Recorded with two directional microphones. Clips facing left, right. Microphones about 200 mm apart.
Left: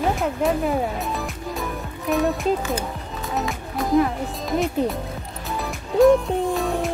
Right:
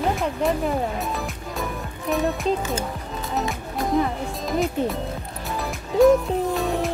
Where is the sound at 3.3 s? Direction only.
Centre (ahead or behind).